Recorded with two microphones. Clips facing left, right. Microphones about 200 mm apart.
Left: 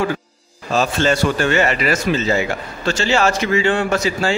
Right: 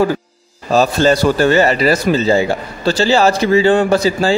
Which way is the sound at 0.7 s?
40° right (ahead or behind).